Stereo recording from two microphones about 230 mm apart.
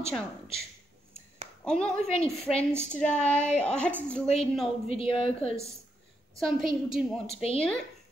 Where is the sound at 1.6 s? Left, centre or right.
Centre.